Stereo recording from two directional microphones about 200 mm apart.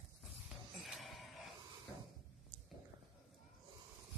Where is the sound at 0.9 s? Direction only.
Centre (ahead or behind).